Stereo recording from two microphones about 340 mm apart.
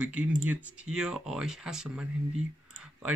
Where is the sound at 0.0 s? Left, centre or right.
Centre.